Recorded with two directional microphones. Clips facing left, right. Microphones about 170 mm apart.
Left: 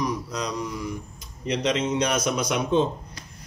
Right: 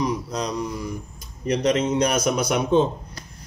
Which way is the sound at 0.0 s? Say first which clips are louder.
Right 3 dB; 30° right (ahead or behind).